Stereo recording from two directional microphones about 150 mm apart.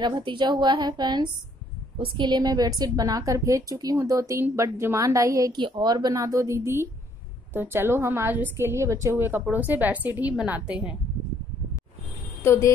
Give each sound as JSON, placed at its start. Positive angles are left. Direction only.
{"t": 0.0, "sound": "a woman's voice", "side_deg": -30}
{"t": 12.4, "sound": "speech", "side_deg": 20}